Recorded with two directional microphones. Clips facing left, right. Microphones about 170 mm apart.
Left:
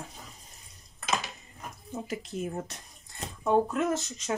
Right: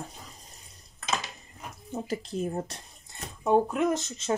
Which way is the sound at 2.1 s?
35° right (ahead or behind).